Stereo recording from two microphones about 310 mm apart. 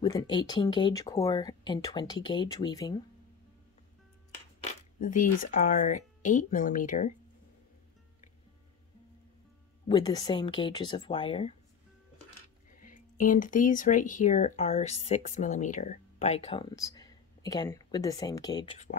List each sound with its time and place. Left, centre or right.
0.0 s speech: centre
4.6 s speech: left
9.8 s speech: centre
12.7 s speech: left